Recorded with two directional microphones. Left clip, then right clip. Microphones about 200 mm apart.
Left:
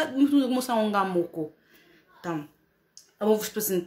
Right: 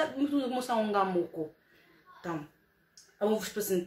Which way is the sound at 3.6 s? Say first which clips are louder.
Left 3 dB; 55° left (ahead or behind).